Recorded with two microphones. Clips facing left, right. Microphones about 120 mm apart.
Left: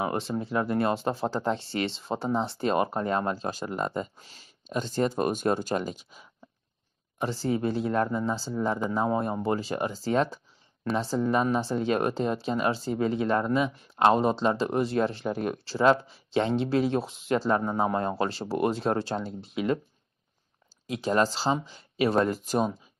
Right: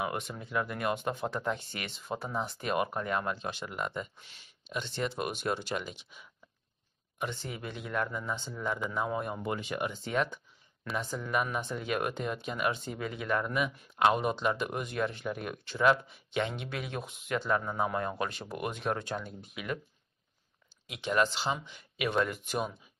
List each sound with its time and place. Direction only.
0.0 s speech: 30° left (ahead or behind)
20.8 s speech: 35° left (ahead or behind)